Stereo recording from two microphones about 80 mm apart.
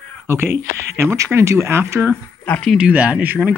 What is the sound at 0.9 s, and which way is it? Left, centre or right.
Speech, right.